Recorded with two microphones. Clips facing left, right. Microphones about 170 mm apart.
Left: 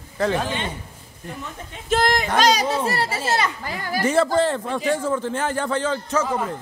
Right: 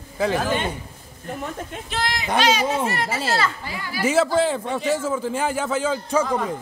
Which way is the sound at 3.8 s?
45° left (ahead or behind).